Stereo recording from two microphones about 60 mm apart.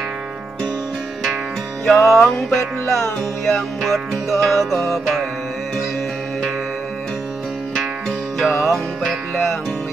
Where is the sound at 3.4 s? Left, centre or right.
Centre.